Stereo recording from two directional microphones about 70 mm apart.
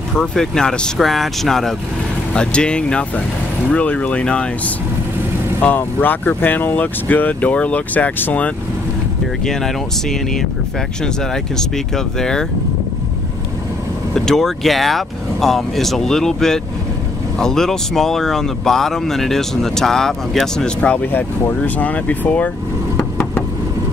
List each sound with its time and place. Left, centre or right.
0.1 s speech: centre
5.6 s speech: left
9.4 s speech: centre
11.5 s speech: centre
14.1 s speech: centre
21.1 s speech: left